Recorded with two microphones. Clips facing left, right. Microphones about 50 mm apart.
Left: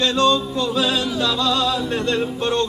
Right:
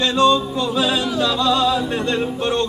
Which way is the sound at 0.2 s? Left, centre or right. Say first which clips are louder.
Right 4 dB; centre.